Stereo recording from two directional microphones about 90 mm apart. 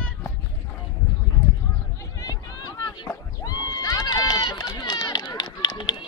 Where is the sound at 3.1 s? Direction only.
40° left (ahead or behind).